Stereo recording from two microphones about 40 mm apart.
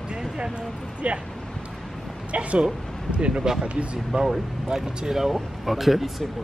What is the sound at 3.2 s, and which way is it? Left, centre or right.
Speech, centre.